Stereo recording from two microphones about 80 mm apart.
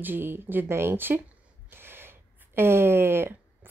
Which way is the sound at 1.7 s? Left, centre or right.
Right.